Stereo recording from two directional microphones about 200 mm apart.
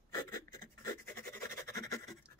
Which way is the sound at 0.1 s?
15° left (ahead or behind).